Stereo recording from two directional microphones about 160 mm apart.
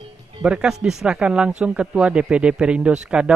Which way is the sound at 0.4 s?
5° right (ahead or behind).